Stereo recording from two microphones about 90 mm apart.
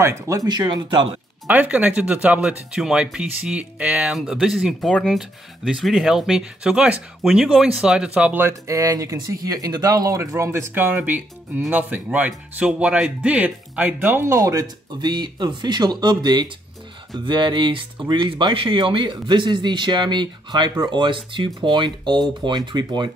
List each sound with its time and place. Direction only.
0.0 s speech: 30° right (ahead or behind)
0.4 s speech: 50° right (ahead or behind)
1.5 s speech: 15° right (ahead or behind)
4.1 s speech: 5° right (ahead or behind)
8.4 s speech: 30° right (ahead or behind); by 23.1 s 55° right (ahead or behind)